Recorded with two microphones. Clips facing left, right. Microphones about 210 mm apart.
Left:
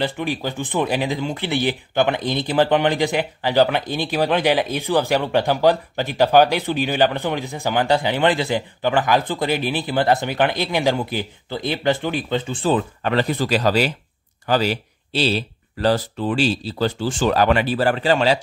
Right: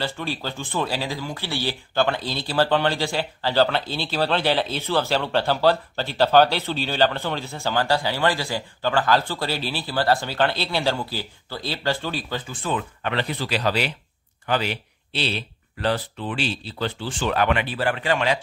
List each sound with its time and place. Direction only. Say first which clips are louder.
0.0 s speech: left 5 dB; 15° left (ahead or behind); by 18.4 s 30° left (ahead or behind)